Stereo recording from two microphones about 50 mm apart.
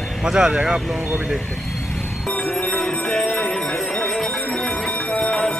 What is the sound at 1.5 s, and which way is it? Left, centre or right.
Vehicle, centre.